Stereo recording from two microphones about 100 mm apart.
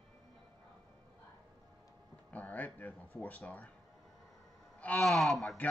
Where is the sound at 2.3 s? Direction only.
15° left (ahead or behind).